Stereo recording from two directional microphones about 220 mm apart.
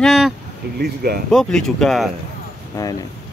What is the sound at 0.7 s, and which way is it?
Speech, 45° right (ahead or behind).